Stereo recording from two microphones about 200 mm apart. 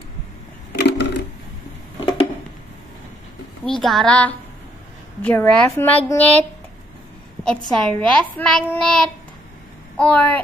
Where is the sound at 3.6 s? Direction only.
Centre (ahead or behind).